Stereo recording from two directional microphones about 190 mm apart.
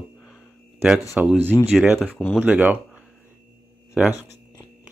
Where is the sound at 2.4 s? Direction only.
5° right (ahead or behind).